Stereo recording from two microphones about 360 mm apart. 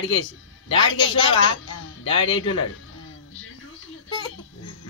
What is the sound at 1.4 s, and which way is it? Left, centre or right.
A man's voice, left.